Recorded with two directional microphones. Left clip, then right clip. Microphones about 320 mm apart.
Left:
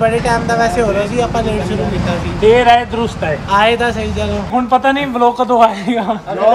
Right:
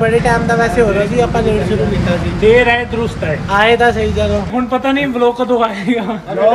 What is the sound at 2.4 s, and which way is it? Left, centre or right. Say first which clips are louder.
Speech: left 2 dB; centre.